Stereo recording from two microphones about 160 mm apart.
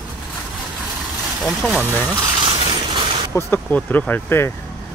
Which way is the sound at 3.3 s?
10° left (ahead or behind).